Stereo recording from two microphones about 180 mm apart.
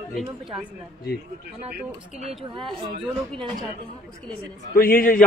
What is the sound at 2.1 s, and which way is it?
Speech, 35° right (ahead or behind).